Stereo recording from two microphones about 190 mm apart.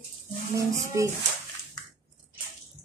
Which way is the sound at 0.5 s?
15° right (ahead or behind).